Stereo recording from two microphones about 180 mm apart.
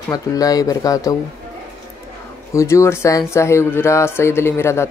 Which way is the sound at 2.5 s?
15° left (ahead or behind).